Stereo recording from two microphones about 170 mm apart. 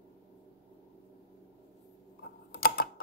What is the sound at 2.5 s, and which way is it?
Typing, 60° left (ahead or behind).